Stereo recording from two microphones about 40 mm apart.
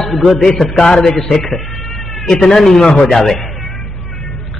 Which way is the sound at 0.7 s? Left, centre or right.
Centre.